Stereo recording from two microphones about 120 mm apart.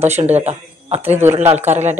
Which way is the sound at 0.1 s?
65° right (ahead or behind).